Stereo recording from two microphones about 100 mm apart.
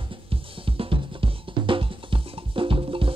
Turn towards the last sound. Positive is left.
turn(degrees=-65)  # may be behind; listen again after turning